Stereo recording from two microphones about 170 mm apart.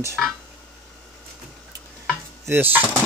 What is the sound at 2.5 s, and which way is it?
Speech, 10° right (ahead or behind).